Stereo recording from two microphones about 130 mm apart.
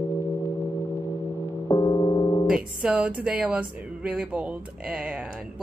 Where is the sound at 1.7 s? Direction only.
25° left (ahead or behind).